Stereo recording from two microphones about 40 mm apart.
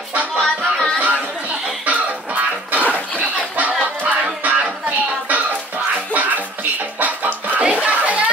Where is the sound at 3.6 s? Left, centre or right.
Right.